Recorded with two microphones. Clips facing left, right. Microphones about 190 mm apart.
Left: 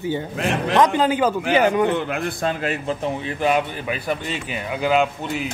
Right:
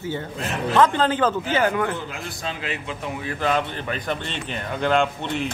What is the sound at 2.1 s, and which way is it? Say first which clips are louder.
Speech: left 8 dB; 50° left (ahead or behind).